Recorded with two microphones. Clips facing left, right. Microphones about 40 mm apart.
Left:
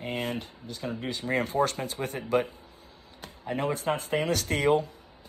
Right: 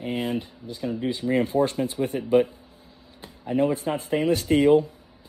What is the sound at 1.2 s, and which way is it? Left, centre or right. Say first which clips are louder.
Speech: right 5 dB; left.